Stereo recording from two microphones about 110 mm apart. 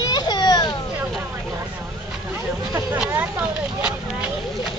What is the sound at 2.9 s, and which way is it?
Speech, 15° right (ahead or behind).